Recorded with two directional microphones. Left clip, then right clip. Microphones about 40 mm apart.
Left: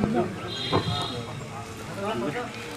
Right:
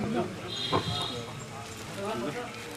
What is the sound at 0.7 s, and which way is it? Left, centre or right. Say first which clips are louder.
Music: left 3 dB; centre.